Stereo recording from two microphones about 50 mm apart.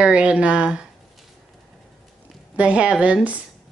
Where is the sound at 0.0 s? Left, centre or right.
Right.